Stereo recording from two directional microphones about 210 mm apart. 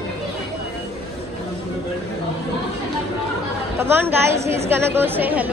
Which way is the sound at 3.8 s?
10° right (ahead or behind).